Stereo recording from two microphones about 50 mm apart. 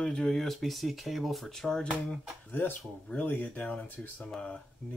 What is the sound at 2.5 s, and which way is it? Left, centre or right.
Speech, left.